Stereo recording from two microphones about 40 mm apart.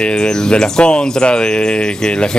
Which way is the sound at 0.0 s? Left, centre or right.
Left.